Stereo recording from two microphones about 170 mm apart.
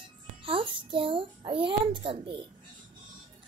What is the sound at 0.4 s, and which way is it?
A child's voice, 30° right (ahead or behind).